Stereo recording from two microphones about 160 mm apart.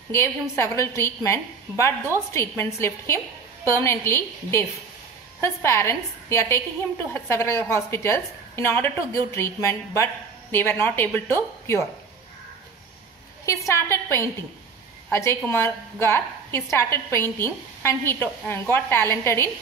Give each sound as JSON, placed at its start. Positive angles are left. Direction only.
{"t": 0.1, "sound": "a woman's voice", "side_deg": 15}
{"t": 13.5, "sound": "a woman's voice", "side_deg": 20}